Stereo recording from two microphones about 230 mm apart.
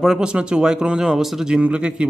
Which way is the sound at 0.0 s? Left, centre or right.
Centre.